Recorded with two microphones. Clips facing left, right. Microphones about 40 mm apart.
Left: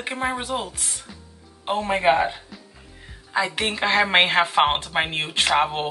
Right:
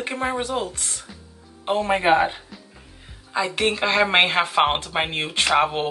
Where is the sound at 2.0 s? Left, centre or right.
Centre.